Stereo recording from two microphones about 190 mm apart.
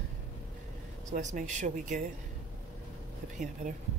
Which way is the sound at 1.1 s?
40° right (ahead or behind).